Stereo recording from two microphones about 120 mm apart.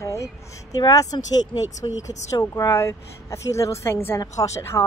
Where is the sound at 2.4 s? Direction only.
20° left (ahead or behind).